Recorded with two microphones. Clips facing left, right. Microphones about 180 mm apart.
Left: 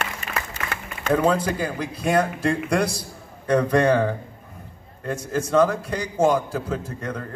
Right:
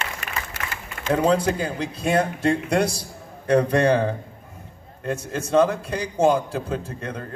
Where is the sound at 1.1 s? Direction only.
25° right (ahead or behind).